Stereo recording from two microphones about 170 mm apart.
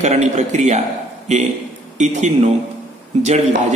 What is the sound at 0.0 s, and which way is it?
Speech, 40° right (ahead or behind).